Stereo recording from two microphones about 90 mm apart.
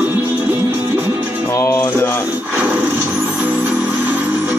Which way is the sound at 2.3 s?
15° right (ahead or behind).